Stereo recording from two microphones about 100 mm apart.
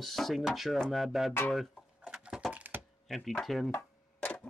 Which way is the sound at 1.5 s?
Centre (ahead or behind).